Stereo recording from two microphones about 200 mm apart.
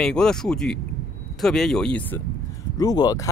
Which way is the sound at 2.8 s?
20° left (ahead or behind).